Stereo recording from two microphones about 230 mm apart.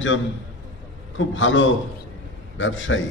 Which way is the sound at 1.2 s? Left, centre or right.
Left.